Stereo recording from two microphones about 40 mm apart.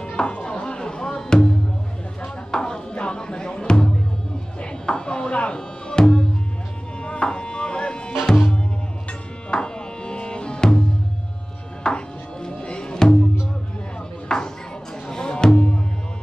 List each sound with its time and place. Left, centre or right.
0.0 s music: left
4.6 s tabla: left
7.0 s music: left
9.5 s music: left
11.8 s music: left
14.3 s music: centre